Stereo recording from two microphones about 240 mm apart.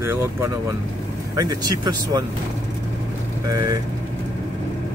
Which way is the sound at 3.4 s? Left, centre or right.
Centre.